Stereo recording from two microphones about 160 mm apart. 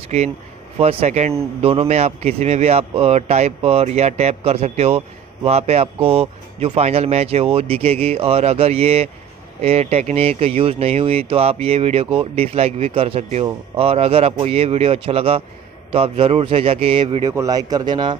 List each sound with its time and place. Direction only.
0.1 s a man's voice: 40° right (ahead or behind)
17.2 s speech: 20° right (ahead or behind)